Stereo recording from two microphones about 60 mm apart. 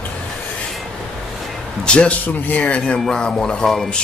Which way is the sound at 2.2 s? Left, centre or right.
Left.